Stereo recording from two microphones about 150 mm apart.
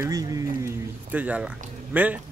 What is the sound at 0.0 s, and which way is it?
Speech, 25° right (ahead or behind).